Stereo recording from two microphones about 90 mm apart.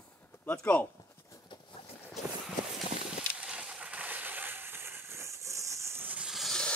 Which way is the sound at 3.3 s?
10° right (ahead or behind).